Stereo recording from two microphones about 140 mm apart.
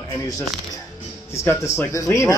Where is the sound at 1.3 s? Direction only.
20° left (ahead or behind).